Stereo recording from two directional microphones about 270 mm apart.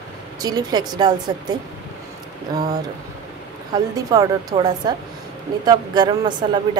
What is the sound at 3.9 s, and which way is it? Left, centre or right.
Speech, centre.